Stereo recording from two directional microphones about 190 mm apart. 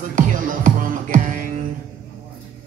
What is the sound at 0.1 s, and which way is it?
Music, 45° right (ahead or behind).